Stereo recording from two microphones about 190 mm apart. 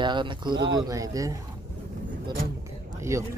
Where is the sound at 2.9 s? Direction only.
15° right (ahead or behind).